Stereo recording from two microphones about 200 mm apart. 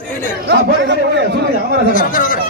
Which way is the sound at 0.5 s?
60° right (ahead or behind).